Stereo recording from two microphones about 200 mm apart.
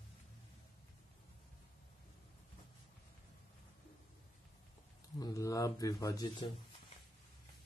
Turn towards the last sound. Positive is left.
turn(degrees=20)  # may be behind; listen again after turning